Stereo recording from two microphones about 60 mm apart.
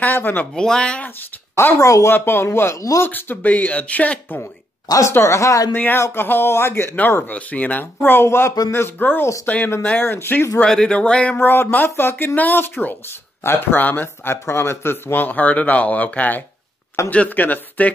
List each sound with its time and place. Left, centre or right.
0.0 s speech: left
0.6 s speech: centre
1.8 s speech: left
2.0 s speech: left
3.1 s speech: left
4.8 s speech: left
5.1 s speech: left
5.7 s speech: left
7.0 s speech: left
8.7 s speech: left
10.6 s speech: centre
11.3 s speech: left
14.3 s speech: left